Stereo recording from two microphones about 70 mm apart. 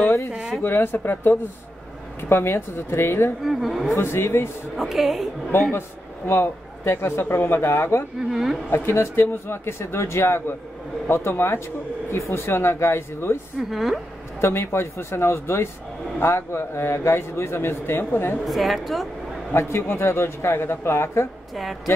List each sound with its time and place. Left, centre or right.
0.3 s speech: centre
0.6 s speech: left
3.4 s a woman's voice: centre
3.9 s speech: left
4.7 s a woman's voice: centre
5.7 s speech: left
8.2 s a woman's voice: centre
8.6 s speech: left
13.6 s a woman's voice: centre
14.4 s speech: left
18.4 s a woman's voice: centre
19.5 s speech: left